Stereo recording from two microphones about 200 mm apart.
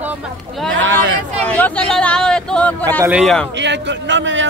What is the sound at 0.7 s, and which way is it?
Speech, 65° right (ahead or behind).